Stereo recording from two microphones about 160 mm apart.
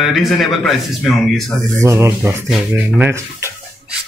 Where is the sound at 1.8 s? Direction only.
15° right (ahead or behind).